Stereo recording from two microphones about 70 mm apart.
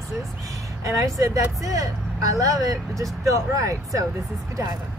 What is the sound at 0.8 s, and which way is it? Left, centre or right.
Speech, right.